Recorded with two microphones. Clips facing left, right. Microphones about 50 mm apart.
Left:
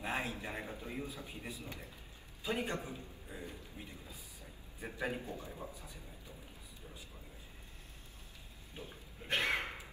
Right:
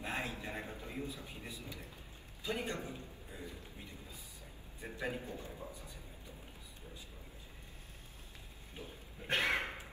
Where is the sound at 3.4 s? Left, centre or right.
Left.